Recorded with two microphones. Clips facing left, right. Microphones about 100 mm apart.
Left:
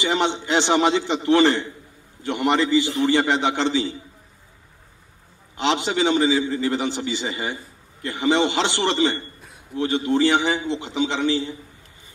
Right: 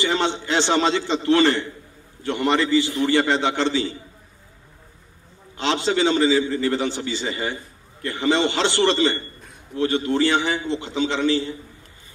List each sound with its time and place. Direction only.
0.0 s a man's voice: 15° left (ahead or behind)
5.6 s a man's voice: 15° left (ahead or behind)